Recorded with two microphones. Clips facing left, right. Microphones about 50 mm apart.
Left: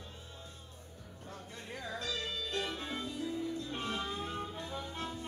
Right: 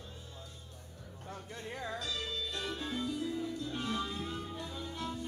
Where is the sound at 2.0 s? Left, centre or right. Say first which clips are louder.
Even; left.